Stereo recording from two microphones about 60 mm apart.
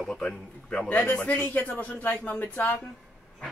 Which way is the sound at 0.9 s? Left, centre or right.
Left.